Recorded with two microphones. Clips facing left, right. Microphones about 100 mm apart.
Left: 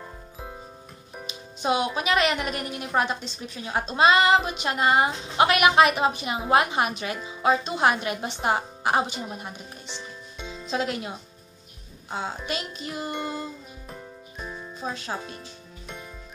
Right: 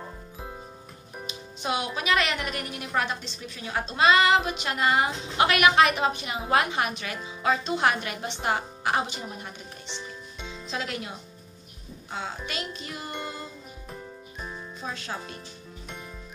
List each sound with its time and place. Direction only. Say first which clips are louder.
1.2 s a woman's voice: left 4 dB; 20° left (ahead or behind)
14.8 s a woman's voice: left 4 dB; 20° left (ahead or behind)